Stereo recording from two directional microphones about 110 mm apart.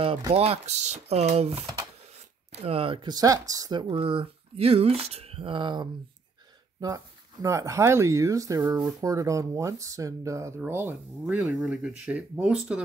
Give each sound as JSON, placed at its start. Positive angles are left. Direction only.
{"t": 0.3, "sound": "speech", "side_deg": -65}
{"t": 3.8, "sound": "speech", "side_deg": -55}
{"t": 7.4, "sound": "speech", "side_deg": -30}